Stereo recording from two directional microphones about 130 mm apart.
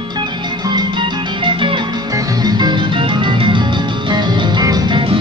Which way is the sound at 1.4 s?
40° right (ahead or behind).